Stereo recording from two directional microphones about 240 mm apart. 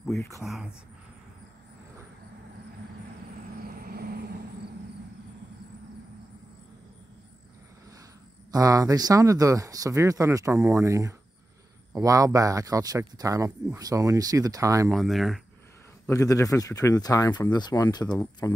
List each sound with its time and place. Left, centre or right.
0.4 s speech: centre
3.5 s vehicle: right
8.5 s speech: centre
14.9 s speech: centre
16.1 s speech: centre